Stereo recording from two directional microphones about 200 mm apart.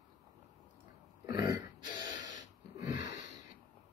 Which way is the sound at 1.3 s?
20° right (ahead or behind).